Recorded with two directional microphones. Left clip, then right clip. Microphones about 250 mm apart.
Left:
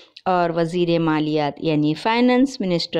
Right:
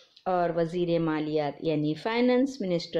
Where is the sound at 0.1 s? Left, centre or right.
Left.